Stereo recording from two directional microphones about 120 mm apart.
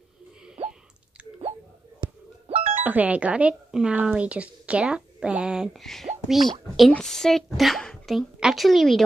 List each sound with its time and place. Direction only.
2.4 s music: 60° right (ahead or behind)
2.8 s a woman's voice: 15° right (ahead or behind)